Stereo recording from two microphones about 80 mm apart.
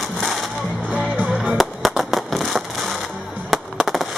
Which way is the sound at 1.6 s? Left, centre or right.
Centre.